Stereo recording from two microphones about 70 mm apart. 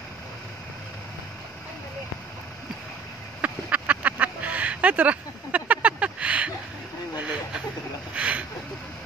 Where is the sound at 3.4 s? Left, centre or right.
Right.